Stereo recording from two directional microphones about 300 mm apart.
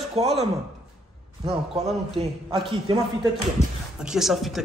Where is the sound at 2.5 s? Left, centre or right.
Centre.